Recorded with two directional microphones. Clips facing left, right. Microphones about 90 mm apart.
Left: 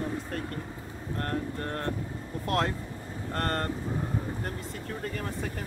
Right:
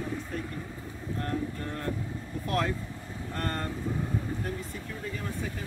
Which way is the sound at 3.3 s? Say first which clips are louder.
Left 3 dB; 55° left (ahead or behind).